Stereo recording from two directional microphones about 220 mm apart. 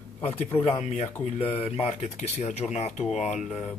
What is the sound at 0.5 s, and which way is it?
Speech, 25° left (ahead or behind).